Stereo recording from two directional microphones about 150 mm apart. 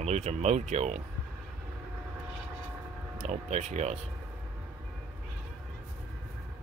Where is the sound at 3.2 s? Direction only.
50° right (ahead or behind).